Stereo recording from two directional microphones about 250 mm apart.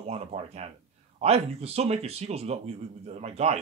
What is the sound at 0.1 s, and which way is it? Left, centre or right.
Speech, right.